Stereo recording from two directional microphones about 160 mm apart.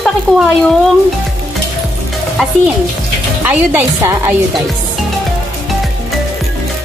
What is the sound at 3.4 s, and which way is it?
Speech, 10° right (ahead or behind).